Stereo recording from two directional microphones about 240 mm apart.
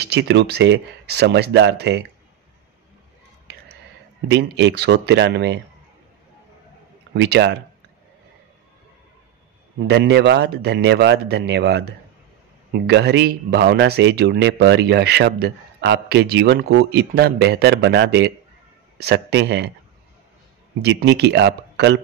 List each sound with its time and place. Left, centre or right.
0.0 s speech: right
4.3 s speech: right
7.2 s speech: right
9.8 s speech: right
20.8 s speech: right